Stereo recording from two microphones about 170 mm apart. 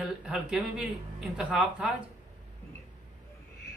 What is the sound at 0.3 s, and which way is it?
Speech, 5° right (ahead or behind).